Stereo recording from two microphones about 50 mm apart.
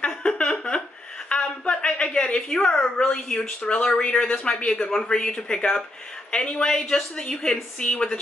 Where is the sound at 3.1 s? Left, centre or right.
Centre.